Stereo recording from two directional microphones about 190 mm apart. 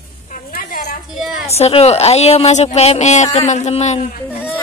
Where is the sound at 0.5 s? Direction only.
50° left (ahead or behind).